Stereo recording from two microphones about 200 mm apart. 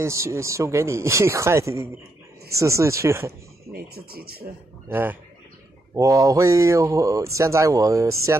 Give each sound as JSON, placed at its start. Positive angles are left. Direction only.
{"t": 0.0, "sound": "speech", "side_deg": -15}
{"t": 3.7, "sound": "speech", "side_deg": -50}
{"t": 4.8, "sound": "a man's voice", "side_deg": -10}